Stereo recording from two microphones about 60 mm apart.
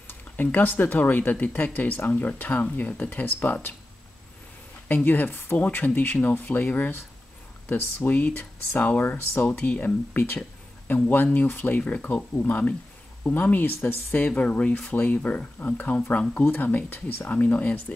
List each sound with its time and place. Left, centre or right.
0.0 s speech: left
4.8 s speech: left